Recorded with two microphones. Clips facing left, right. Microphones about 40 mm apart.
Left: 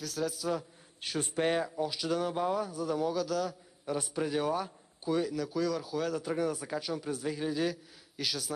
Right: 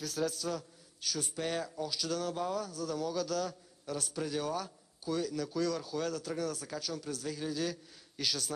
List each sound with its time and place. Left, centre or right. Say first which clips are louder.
0.0 s a man's voice: even; centre
1.0 s speech: left 6 dB; left
1.6 s speech: left 4 dB; centre
3.2 s speech: left 2 dB; centre
3.8 s a man's voice: left 4 dB; left
5.3 s speech: left 2 dB; centre
6.1 s speech: left 4 dB; left
7.7 s a man's voice: left 2 dB; centre